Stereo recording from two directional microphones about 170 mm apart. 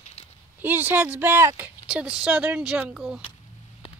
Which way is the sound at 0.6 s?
10° right (ahead or behind).